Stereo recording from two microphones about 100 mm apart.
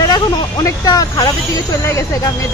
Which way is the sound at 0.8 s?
40° left (ahead or behind).